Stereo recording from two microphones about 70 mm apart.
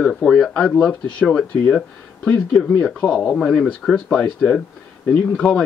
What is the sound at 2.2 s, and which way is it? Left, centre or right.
Speech, centre.